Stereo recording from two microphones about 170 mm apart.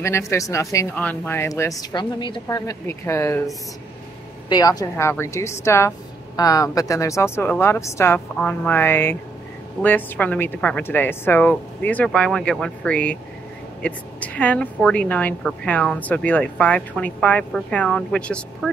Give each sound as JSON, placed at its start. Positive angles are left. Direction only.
{"t": 0.0, "sound": "a woman's voice", "side_deg": 15}
{"t": 4.5, "sound": "a woman's voice", "side_deg": 25}